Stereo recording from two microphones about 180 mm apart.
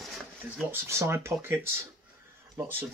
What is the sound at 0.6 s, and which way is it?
Speech, 15° right (ahead or behind).